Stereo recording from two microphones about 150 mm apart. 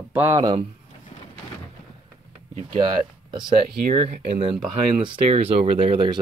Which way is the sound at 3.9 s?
45° right (ahead or behind).